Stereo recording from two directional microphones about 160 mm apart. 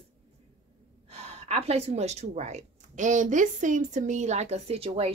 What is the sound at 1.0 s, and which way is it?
A woman's voice, 40° right (ahead or behind).